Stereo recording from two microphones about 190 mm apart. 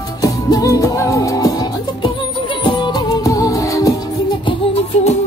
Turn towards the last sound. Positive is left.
turn(degrees=35)  # may be behind; listen again after turning